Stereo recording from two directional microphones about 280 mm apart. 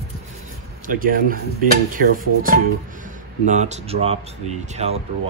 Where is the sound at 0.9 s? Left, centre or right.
Right.